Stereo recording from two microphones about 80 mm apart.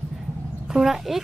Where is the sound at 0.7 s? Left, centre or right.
Centre.